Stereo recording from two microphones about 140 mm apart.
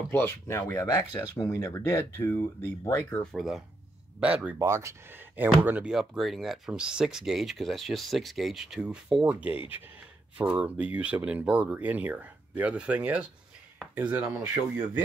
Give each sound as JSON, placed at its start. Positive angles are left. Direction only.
{"t": 0.1, "sound": "speech", "side_deg": 15}
{"t": 3.3, "sound": "speech", "side_deg": 0}
{"t": 4.6, "sound": "speech", "side_deg": -20}